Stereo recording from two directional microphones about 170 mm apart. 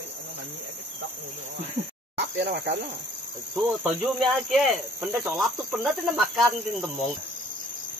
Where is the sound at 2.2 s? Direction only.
85° right.